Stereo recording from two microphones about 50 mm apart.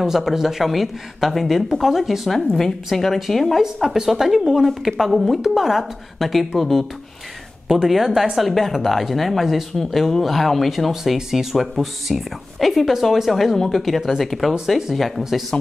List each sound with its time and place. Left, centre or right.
0.0 s a woman's voice: centre
15.5 s speech: left